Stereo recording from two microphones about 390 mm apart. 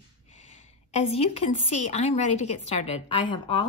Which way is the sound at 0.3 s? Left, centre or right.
Centre.